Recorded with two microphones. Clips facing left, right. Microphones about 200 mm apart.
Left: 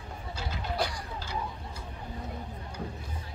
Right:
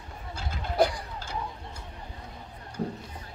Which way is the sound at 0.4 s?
50° right (ahead or behind).